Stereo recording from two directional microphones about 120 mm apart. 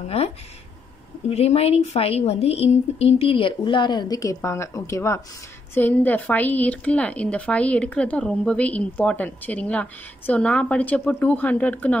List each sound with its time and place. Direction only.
1.3 s a woman's voice: 60° left (ahead or behind); by 12.0 s 10° left (ahead or behind)